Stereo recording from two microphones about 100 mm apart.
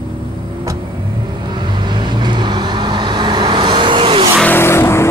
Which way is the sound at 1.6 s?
50° right (ahead or behind).